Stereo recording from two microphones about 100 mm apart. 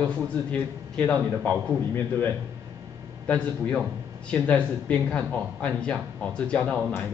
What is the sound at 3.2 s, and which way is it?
Speech, 10° left (ahead or behind).